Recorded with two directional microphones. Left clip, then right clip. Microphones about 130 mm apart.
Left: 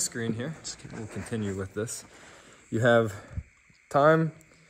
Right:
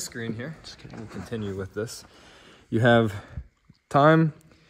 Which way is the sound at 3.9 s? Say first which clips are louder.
Right 3 dB; 90° right.